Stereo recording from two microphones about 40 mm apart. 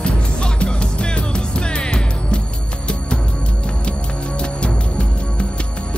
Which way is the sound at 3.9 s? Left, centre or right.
Left.